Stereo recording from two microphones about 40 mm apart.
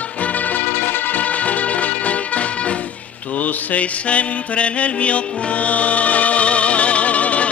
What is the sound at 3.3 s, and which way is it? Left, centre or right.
Mantra, left.